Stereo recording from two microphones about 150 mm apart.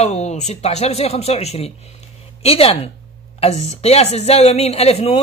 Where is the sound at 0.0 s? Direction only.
45° left (ahead or behind).